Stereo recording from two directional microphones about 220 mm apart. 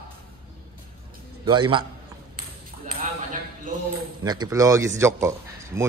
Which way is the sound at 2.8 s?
40° right (ahead or behind).